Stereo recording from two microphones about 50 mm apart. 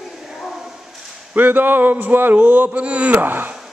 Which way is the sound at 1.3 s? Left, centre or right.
Right.